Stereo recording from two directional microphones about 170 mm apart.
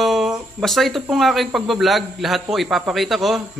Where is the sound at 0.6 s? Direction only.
Centre (ahead or behind).